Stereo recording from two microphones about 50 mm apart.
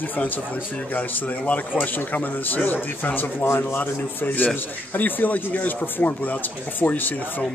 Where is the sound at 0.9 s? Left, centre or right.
Left.